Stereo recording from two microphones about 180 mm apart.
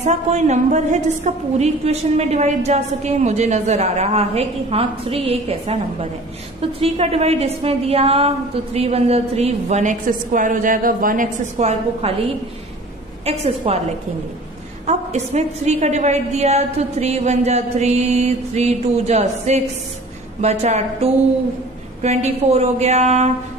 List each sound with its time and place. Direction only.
0.0 s a woman's voice: 40° right (ahead or behind)